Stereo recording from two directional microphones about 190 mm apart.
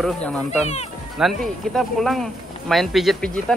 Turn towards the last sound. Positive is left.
turn(degrees=0)  # may be behind; listen again after turning